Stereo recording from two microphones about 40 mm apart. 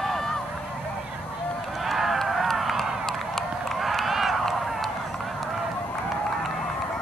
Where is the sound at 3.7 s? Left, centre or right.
Centre.